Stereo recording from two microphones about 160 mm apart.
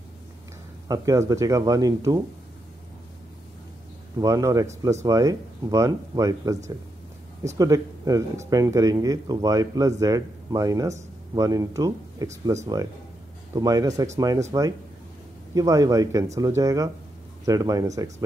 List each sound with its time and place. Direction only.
0.8 s speech: 20° right (ahead or behind)
4.2 s speech: 20° right (ahead or behind)
13.6 s speech: 20° right (ahead or behind)
15.5 s speech: 20° right (ahead or behind)